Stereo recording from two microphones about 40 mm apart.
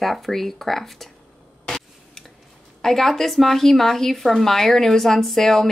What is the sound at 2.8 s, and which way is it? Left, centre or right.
Speech, centre.